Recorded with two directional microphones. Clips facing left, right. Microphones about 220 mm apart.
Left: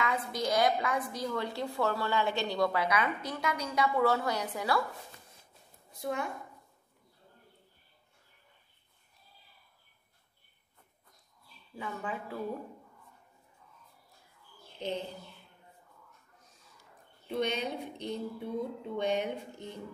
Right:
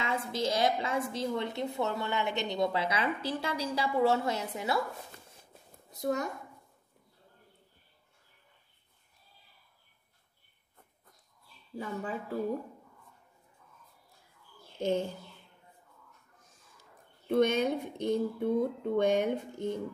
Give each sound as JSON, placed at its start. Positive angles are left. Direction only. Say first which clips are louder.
{"t": 0.0, "sound": "speech", "louder": "even", "side_deg": -25}
{"t": 5.9, "sound": "a woman's voice", "louder": "right 3 dB", "side_deg": -40}
{"t": 11.7, "sound": "speech", "louder": "right 2 dB", "side_deg": -40}
{"t": 14.8, "sound": "speech", "louder": "right 6 dB", "side_deg": -45}
{"t": 17.3, "sound": "speech", "louder": "right 6 dB", "side_deg": -50}